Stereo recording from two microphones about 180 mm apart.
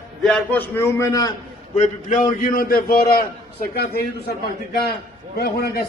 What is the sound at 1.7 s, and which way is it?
A man's voice, 45° left (ahead or behind).